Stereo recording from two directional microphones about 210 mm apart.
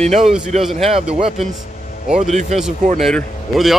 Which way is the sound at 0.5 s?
30° right (ahead or behind).